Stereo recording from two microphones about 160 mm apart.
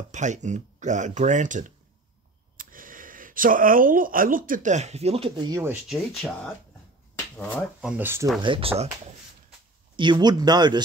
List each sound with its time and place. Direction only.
0.1 s speech: 50° right (ahead or behind); by 5.8 s 20° right (ahead or behind)
5.9 s speech: centre (ahead or behind)
7.8 s speech: 15° right (ahead or behind)
8.4 s speech: 35° right (ahead or behind)